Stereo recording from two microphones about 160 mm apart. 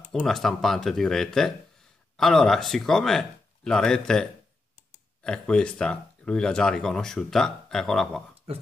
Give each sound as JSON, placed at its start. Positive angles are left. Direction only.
{"t": 0.1, "sound": "speech", "side_deg": 5}